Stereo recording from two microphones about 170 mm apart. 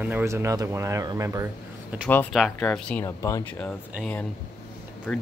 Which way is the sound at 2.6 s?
10° left (ahead or behind).